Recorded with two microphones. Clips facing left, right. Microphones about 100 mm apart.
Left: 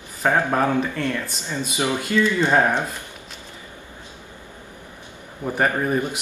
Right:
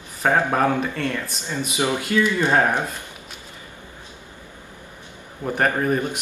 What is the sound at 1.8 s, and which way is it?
Speech, 15° right (ahead or behind).